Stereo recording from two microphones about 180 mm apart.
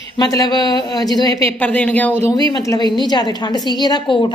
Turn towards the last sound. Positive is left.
turn(degrees=25)  # may be behind; listen again after turning